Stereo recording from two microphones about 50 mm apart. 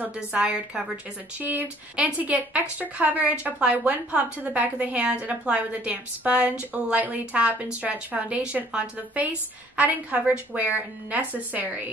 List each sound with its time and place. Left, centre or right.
0.3 s a woman's voice: right
1.4 s a woman's voice: right